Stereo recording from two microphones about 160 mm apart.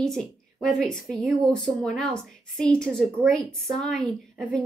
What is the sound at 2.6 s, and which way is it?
A woman's voice, 5° left (ahead or behind).